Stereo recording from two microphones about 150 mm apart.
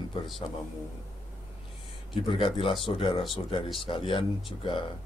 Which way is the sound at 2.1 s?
35° left (ahead or behind).